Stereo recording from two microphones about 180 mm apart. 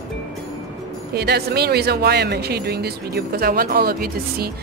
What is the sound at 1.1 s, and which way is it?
Speech, 60° right (ahead or behind).